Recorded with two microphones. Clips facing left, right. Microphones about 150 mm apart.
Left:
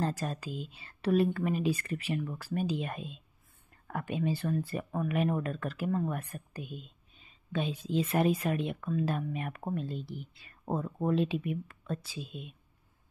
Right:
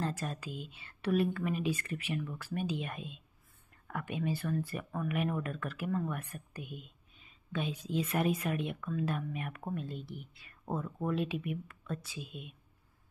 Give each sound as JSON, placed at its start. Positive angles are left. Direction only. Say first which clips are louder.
{"t": 0.0, "sound": "speech", "louder": "left 3 dB", "side_deg": 35}